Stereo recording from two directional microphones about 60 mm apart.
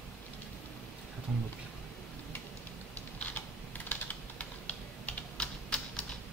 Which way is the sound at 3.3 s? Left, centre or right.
Left.